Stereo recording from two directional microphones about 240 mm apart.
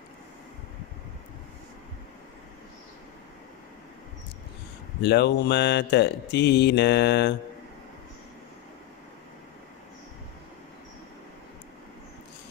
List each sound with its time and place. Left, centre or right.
5.0 s speech: left